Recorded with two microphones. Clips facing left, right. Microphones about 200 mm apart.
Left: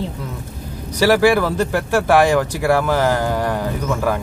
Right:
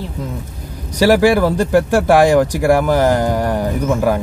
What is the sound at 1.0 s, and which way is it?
Speech, 15° right (ahead or behind).